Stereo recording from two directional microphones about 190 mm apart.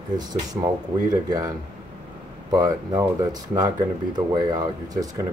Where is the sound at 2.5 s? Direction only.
20° right (ahead or behind).